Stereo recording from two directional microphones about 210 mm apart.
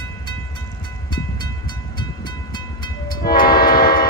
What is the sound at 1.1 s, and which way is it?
Train, 20° left (ahead or behind).